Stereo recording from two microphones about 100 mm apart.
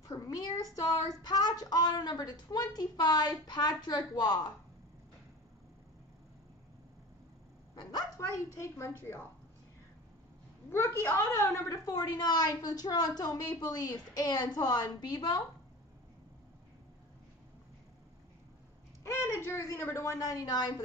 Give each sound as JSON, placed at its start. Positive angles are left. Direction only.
{"t": 0.0, "sound": "a child's voice", "side_deg": 35}
{"t": 7.7, "sound": "a woman's voice", "side_deg": 40}
{"t": 8.5, "sound": "a woman's voice", "side_deg": 25}
{"t": 10.7, "sound": "a woman's voice", "side_deg": 25}
{"t": 19.0, "sound": "a woman's voice", "side_deg": 30}